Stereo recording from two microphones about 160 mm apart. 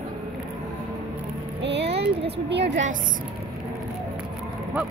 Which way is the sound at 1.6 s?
90° right.